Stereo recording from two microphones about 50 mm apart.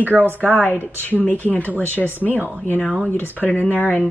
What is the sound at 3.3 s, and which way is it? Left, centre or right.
Speech, left.